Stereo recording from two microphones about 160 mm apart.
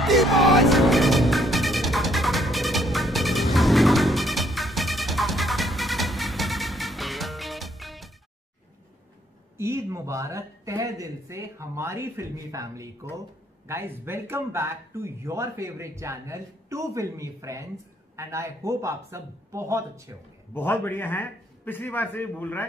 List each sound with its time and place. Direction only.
0.0 s music: centre (ahead or behind)
9.6 s speech: 15° right (ahead or behind)
20.5 s a man's voice: 15° left (ahead or behind)